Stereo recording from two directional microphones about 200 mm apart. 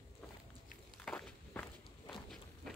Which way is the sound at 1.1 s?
5° left (ahead or behind).